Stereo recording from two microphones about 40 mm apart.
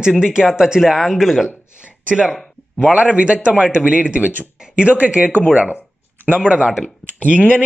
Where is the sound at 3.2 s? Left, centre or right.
Right.